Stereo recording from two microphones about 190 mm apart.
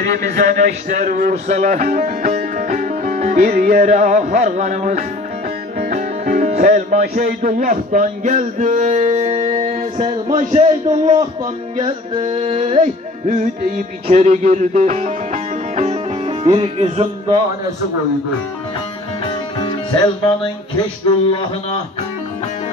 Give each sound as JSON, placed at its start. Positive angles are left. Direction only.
{"t": 0.4, "sound": "speech", "side_deg": -40}
{"t": 5.8, "sound": "music", "side_deg": -45}
{"t": 9.6, "sound": "a man's voice", "side_deg": -45}
{"t": 12.2, "sound": "music", "side_deg": -40}
{"t": 19.6, "sound": "music", "side_deg": 25}
{"t": 21.3, "sound": "speech", "side_deg": 25}